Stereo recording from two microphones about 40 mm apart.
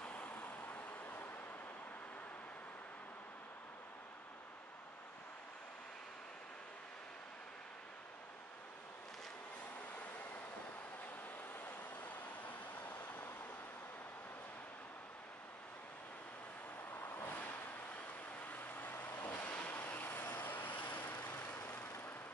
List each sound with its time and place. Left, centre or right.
0.0 s vehicle: left
12.0 s vehicle: left
16.9 s vehicle: left
18.5 s vehicle: left